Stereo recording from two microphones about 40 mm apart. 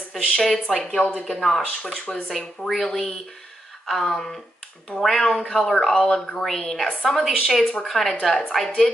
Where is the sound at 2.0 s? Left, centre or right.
Left.